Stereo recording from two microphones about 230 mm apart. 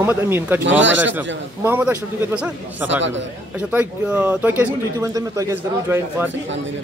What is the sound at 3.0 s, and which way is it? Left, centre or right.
Speech, right.